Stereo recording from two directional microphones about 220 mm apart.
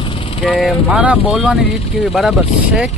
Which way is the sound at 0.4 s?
Centre (ahead or behind).